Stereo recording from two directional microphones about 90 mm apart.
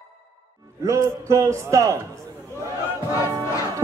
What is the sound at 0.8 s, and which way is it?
A man's voice, 35° right (ahead or behind).